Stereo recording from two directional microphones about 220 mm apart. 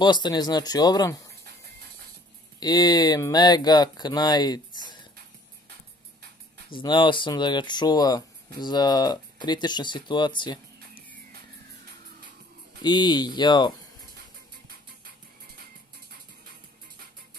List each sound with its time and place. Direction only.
0.0 s speech: 20° left (ahead or behind)
2.6 s speech: 15° left (ahead or behind)
6.7 s speech: 20° left (ahead or behind)
12.8 s speech: 20° left (ahead or behind)